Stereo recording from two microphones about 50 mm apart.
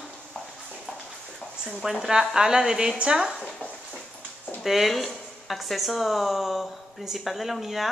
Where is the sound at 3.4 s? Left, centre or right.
Centre.